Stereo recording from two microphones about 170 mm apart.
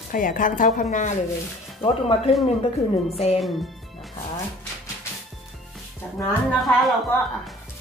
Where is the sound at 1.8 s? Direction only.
35° left (ahead or behind).